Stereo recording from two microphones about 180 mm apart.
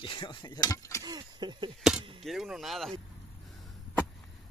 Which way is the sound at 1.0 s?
25° right (ahead or behind).